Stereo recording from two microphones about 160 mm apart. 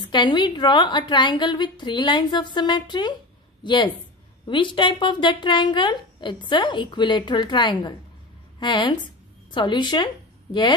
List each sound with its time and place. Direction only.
0.1 s a woman's voice: 30° left (ahead or behind)